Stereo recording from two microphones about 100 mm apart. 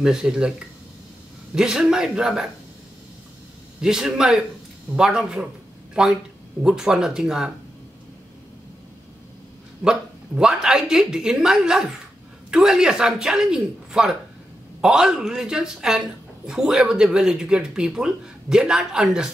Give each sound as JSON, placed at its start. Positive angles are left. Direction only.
{"t": 0.0, "sound": "speech", "side_deg": -5}
{"t": 1.5, "sound": "speech", "side_deg": -5}
{"t": 3.8, "sound": "speech", "side_deg": -5}
{"t": 9.8, "sound": "speech", "side_deg": -5}